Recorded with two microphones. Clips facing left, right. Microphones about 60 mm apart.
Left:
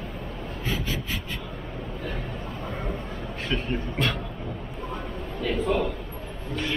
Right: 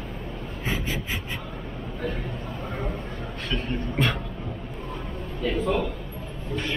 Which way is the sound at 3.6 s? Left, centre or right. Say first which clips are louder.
Even; centre.